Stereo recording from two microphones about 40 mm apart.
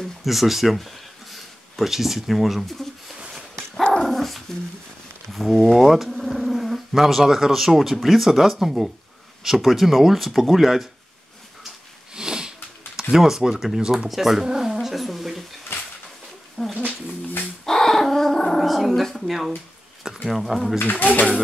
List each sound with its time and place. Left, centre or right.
0.2 s speech: centre
4.0 s dog: centre
5.3 s a sound: centre
7.2 s speech: centre
12.1 s sniff: centre
13.1 s speech: centre
16.6 s a sound: centre
17.6 s dog: centre
19.2 s speech: centre
21.0 s speech: left